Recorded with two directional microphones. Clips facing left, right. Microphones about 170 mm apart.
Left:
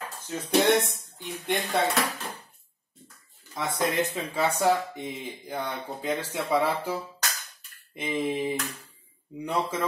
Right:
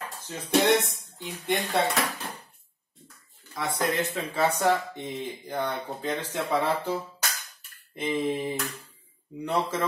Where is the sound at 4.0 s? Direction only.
15° left (ahead or behind).